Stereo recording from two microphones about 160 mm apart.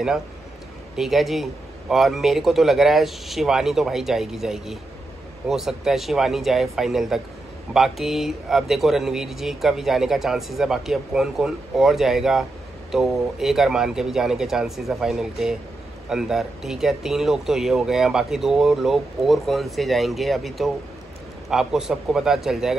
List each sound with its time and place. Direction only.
0.9 s speech: centre (ahead or behind)